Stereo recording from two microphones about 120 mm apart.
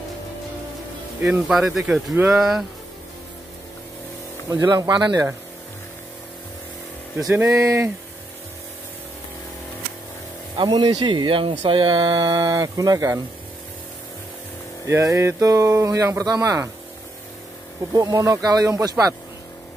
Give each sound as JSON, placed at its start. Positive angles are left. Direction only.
{"t": 1.5, "sound": "speech", "side_deg": 0}
{"t": 4.5, "sound": "speech", "side_deg": -30}
{"t": 7.4, "sound": "speech", "side_deg": -25}
{"t": 10.6, "sound": "speech", "side_deg": -40}
{"t": 14.9, "sound": "speech", "side_deg": -25}
{"t": 17.9, "sound": "speech", "side_deg": -25}